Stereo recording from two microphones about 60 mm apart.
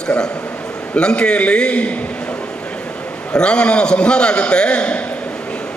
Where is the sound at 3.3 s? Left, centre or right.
Centre.